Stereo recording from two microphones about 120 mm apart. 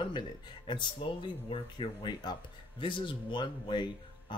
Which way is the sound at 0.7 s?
45° left (ahead or behind).